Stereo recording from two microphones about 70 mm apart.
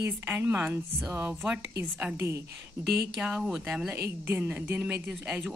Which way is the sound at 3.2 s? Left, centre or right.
Centre.